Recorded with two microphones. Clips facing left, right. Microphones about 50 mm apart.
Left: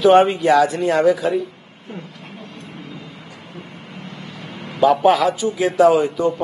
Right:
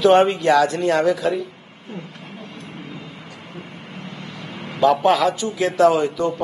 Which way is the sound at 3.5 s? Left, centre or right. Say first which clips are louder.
Even; centre.